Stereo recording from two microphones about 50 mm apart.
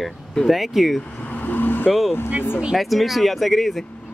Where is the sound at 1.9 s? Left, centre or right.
Centre.